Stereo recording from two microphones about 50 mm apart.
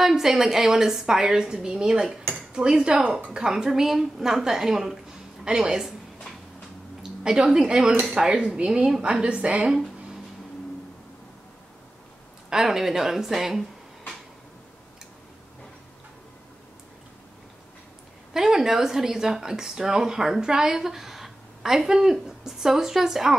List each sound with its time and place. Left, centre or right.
0.0 s speech: centre; by 3.3 s right
3.3 s speech: centre
7.0 s a woman's voice: centre
8.6 s speech: centre
9.0 s a woman's voice: right
12.4 s speech: centre
18.3 s speech: centre